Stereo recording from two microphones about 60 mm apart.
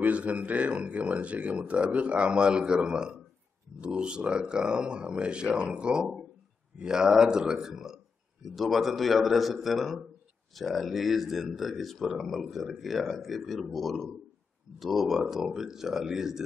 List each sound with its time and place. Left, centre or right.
0.0 s speech: right; by 16.4 s centre